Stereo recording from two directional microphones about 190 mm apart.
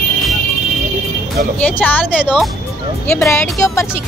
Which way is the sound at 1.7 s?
10° left (ahead or behind).